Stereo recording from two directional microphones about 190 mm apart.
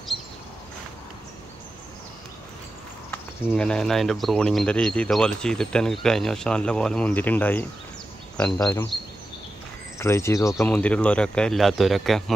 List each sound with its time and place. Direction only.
3.1 s speech: 5° left (ahead or behind)
9.9 s speech: 15° left (ahead or behind)